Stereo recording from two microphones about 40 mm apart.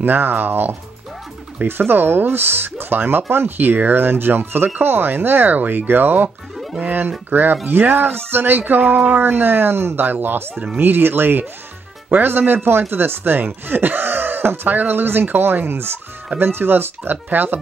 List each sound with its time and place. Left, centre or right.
0.0 s speech: right
9.2 s speech: right
10.0 s speech: right
13.7 s a sound: right
14.6 s speech: right